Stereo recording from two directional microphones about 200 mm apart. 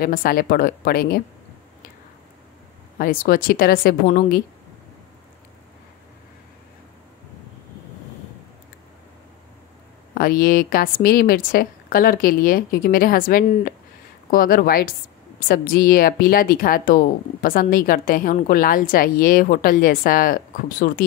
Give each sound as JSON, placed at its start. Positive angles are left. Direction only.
{"t": 0.0, "sound": "speech", "side_deg": 45}
{"t": 3.0, "sound": "speech", "side_deg": 45}
{"t": 10.1, "sound": "speech", "side_deg": 45}